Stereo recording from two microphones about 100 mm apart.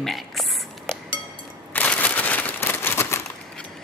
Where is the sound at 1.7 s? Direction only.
15° left (ahead or behind).